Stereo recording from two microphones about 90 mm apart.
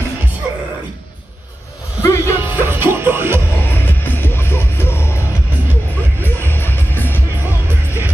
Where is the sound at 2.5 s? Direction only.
20° right (ahead or behind).